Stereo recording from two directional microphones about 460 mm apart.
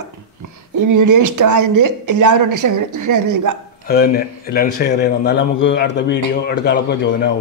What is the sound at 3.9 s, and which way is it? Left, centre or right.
A man's voice, centre.